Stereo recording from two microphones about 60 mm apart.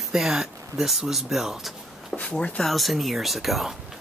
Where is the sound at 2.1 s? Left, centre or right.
Left.